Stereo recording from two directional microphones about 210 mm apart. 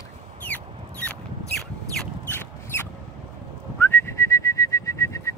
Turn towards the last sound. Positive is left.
turn(degrees=15)  # may be behind; listen again after turning